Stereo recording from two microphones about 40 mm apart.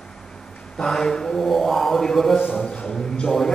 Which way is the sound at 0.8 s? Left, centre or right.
Centre.